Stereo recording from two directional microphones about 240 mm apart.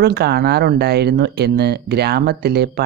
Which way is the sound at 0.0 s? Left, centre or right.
Right.